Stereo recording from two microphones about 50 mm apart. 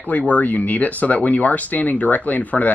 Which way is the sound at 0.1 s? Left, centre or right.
Left.